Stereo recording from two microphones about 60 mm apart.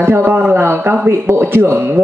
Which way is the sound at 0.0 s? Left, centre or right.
Right.